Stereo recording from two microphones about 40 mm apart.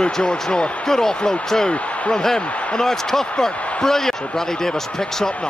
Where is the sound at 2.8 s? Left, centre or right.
Centre.